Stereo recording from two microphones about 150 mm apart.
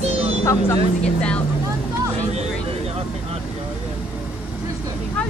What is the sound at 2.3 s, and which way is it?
Vehicle, 45° right (ahead or behind).